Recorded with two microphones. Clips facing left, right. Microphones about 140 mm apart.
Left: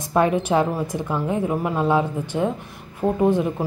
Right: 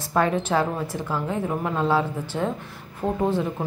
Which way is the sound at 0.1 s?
15° left (ahead or behind).